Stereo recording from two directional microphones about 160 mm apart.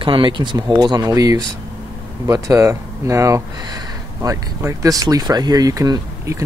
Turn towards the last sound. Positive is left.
turn(degrees=-25)  # may be behind; listen again after turning